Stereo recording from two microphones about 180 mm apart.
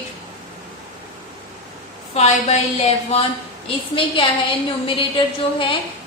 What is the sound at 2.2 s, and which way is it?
A woman's voice, 35° left (ahead or behind).